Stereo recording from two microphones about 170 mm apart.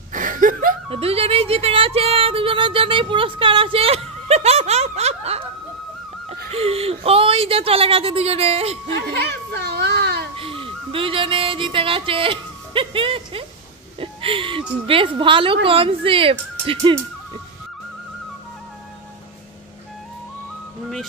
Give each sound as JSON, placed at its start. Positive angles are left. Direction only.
{"t": 0.1, "sound": "chuckle", "side_deg": -50}
{"t": 0.8, "sound": "music", "side_deg": -35}
{"t": 6.2, "sound": "speech", "side_deg": -35}
{"t": 9.5, "sound": "baby cry", "side_deg": -75}
{"t": 10.3, "sound": "music", "side_deg": -30}
{"t": 13.9, "sound": "a sound", "side_deg": -30}
{"t": 14.9, "sound": "speech", "side_deg": -30}